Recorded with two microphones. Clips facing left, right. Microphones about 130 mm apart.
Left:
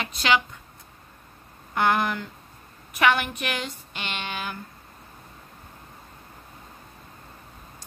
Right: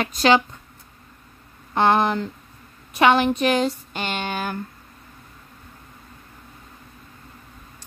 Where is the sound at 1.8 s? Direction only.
30° right (ahead or behind); by 4.5 s 45° right (ahead or behind).